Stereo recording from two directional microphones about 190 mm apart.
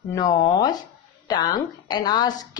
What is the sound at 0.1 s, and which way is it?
A woman's voice, 20° left (ahead or behind).